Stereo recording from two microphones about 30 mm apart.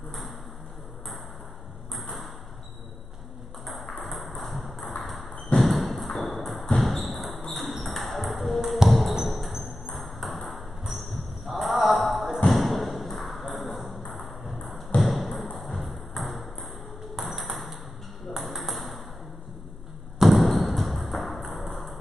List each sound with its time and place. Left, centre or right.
2.0 s ping: centre
3.6 s ping: centre
6.8 s a sound: centre
7.5 s ping: centre
8.8 s a sound: centre
9.2 s music: centre
9.8 s ping: centre
12.4 s thump: centre
14.2 s ping: centre
15.0 s a sound: centre
17.1 s ping: centre
20.2 s a sound: centre
21.0 s ping: centre